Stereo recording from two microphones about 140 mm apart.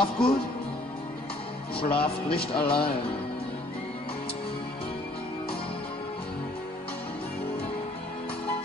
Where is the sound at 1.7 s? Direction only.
40° left (ahead or behind).